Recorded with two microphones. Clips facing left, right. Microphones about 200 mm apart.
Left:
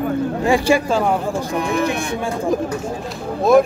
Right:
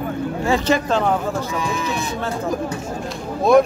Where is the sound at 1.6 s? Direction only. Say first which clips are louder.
Left 4 dB; 60° left (ahead or behind).